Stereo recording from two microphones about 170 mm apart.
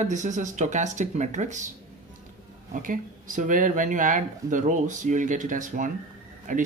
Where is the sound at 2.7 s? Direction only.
50° right (ahead or behind).